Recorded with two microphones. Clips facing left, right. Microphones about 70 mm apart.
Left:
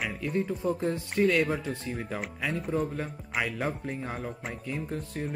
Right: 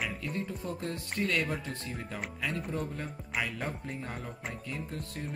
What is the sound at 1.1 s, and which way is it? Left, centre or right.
Speech, centre.